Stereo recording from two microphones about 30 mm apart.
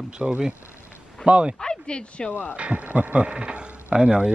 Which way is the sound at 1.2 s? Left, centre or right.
Right.